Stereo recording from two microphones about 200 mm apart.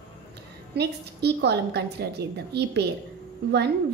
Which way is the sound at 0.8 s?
55° right (ahead or behind).